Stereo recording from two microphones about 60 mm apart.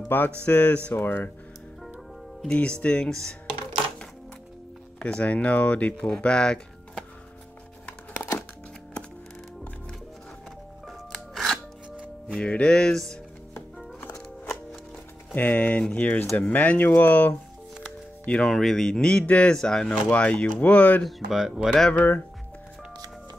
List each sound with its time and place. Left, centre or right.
0.1 s speech: left
0.9 s speech: left
2.4 s speech: centre
4.9 s speech: centre
8.1 s music: left
10.9 s music: centre
12.4 s speech: centre
15.3 s speech: left
18.2 s speech: centre
18.5 s speech: centre
19.9 s speech: left
21.3 s speech: centre
21.9 s speech: left